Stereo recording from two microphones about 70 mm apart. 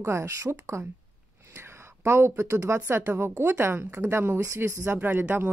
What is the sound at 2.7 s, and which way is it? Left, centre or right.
A woman's voice, right.